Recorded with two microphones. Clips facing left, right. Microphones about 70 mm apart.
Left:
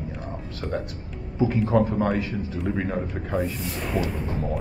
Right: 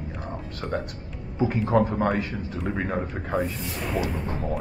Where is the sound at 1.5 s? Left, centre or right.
Centre.